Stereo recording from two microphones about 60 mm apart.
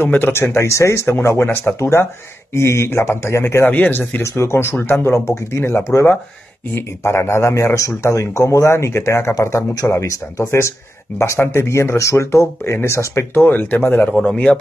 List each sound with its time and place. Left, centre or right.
0.1 s a man's voice: left
3.7 s speech: left
4.2 s a man's voice: left
7.0 s a man's voice: left
14.2 s a man's voice: centre